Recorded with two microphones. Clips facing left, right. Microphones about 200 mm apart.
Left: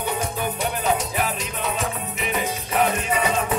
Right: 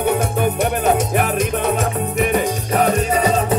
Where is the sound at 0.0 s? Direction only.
55° right (ahead or behind).